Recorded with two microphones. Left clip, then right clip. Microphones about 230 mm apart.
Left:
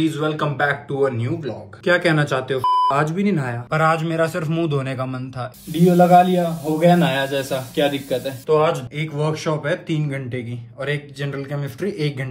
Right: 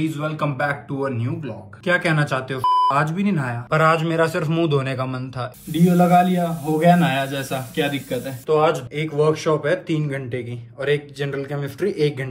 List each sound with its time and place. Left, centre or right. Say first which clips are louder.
0.2 s speech: left 3 dB; right
1.0 s speech: left 5 dB; right
1.9 s a man's voice: left 2 dB; centre
8.5 s a man's voice: even; centre